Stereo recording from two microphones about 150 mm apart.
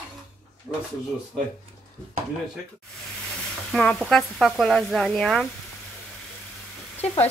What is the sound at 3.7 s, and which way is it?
Speech, 5° left (ahead or behind).